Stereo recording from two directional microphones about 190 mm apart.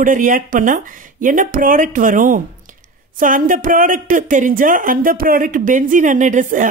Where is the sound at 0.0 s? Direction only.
45° right (ahead or behind).